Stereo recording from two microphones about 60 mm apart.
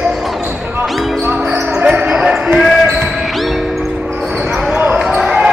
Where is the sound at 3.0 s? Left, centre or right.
Centre.